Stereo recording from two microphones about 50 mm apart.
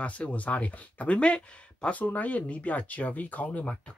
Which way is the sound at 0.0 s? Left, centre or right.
Left.